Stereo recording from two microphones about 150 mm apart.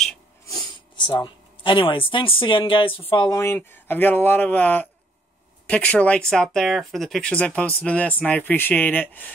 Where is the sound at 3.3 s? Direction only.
15° left (ahead or behind).